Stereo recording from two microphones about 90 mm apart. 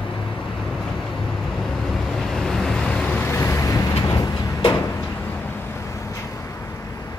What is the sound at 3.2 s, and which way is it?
Vehicle, 30° left (ahead or behind).